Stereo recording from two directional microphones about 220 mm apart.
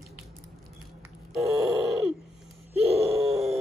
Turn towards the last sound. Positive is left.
turn(degrees=-30)  # may be behind; listen again after turning